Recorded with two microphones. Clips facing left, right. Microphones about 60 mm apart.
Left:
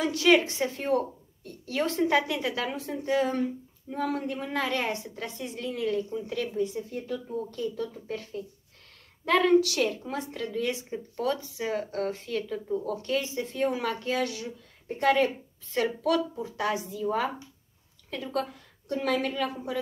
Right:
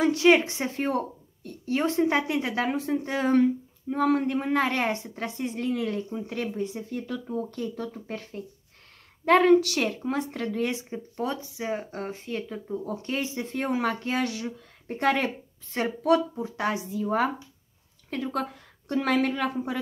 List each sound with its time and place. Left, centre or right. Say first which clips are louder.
0.0 s a woman's voice: right 2 dB; right
10.7 s speech: even; right
15.7 s speech: right 3 dB; right
16.5 s speech: right 1 dB; right